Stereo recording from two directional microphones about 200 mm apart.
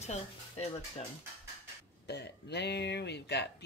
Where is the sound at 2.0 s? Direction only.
55° left (ahead or behind).